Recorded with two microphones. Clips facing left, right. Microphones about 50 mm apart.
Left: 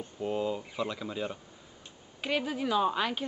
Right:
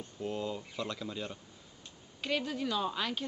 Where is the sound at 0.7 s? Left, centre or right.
Centre.